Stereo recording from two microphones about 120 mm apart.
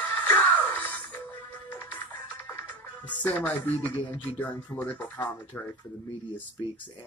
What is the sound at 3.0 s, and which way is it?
Speech, 15° left (ahead or behind).